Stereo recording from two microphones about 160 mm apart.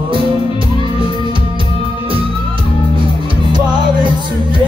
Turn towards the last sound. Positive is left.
turn(degrees=-25)  # may be behind; listen again after turning